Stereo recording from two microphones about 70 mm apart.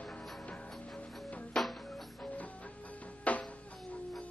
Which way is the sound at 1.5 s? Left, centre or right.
Centre.